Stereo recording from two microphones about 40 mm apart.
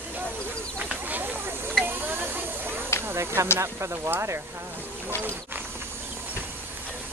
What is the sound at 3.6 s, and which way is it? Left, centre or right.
Speech, right.